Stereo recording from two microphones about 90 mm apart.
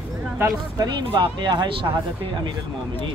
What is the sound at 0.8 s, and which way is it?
Speech, 55° right (ahead or behind).